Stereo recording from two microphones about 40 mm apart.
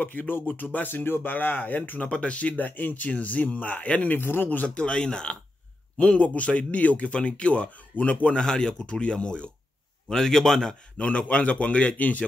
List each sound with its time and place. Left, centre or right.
0.0 s speech: left
1.9 s speech: left
3.1 s speech: left
4.1 s a man's voice: left
4.5 s speech: left
5.9 s speech: left
8.4 s speech: left
10.0 s speech: centre
11.0 s speech: left